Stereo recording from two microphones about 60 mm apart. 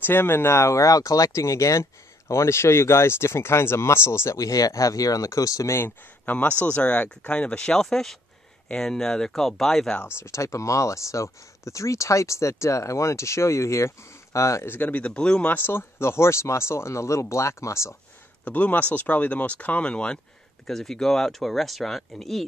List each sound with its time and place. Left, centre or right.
0.0 s speech: left
4.4 s speech: left
5.8 s speech: left
6.6 s speech: left
10.1 s speech: left
14.7 s speech: left
15.4 s speech: left
18.4 s speech: left
20.6 s speech: centre